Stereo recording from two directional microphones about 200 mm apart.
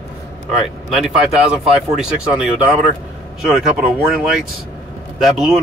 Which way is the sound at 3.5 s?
Centre (ahead or behind).